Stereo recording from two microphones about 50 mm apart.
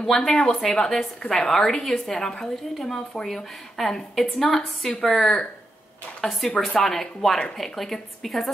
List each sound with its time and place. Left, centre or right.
0.0 s a woman's voice: centre